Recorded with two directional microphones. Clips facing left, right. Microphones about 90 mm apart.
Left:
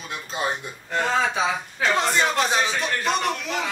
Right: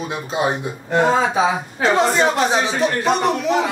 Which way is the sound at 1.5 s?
30° right (ahead or behind).